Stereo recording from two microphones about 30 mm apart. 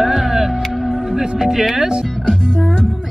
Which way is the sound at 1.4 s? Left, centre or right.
Centre.